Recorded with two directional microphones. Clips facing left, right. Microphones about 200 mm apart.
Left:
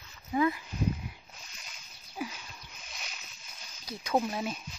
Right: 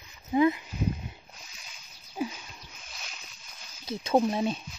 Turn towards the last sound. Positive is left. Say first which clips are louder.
# right 5 dB
turn(degrees=-25)  # may be behind; listen again after turning